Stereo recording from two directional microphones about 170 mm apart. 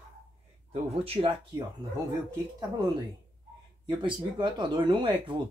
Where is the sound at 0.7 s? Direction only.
35° right (ahead or behind).